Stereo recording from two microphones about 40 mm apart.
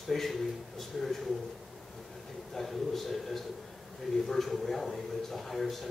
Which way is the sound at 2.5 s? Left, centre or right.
Centre.